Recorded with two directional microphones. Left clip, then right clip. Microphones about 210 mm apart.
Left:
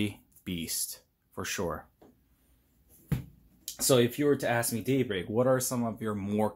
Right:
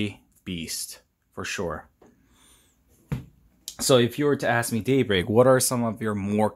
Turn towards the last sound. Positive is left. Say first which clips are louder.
# right 6 dB
turn(degrees=-25)  # may be behind; listen again after turning